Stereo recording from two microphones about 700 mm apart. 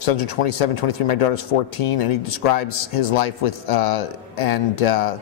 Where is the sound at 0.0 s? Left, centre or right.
Left.